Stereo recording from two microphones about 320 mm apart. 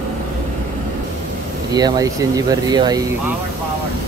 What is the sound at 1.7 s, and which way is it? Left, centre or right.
Speech, centre.